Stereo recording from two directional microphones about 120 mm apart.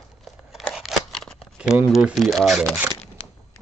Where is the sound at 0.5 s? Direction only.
Centre (ahead or behind).